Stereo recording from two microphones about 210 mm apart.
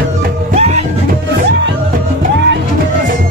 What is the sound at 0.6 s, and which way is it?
Music, 30° right (ahead or behind).